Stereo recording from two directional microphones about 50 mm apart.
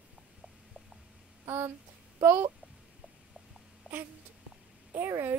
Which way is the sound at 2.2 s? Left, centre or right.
Right.